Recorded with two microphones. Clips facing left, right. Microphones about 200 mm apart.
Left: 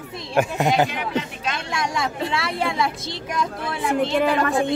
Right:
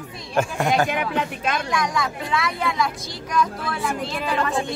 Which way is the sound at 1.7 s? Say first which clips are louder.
Right 1 dB; 25° left (ahead or behind).